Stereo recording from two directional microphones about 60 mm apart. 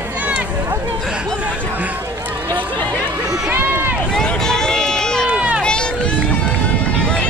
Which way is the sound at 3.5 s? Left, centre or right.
Right.